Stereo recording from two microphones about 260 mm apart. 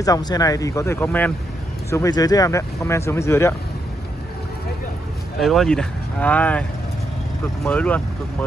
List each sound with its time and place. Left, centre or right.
0.0 s speech: centre
5.4 s speech: centre
7.6 s speech: centre